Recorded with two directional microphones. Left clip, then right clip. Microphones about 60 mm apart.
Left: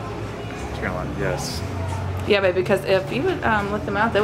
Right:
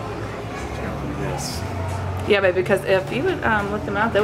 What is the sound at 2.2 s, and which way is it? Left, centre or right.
A woman's voice, centre.